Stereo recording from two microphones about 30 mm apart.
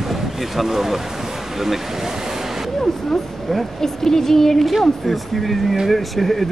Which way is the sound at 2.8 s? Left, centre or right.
Centre.